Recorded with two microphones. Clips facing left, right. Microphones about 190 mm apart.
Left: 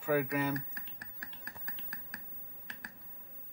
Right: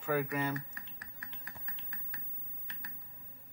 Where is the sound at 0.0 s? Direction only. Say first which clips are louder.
Left 2 dB; 10° left (ahead or behind).